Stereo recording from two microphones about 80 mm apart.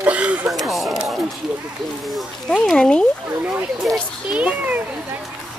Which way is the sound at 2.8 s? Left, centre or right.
Centre.